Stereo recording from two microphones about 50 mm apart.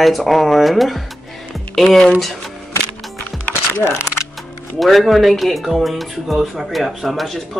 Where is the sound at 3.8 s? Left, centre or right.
Left.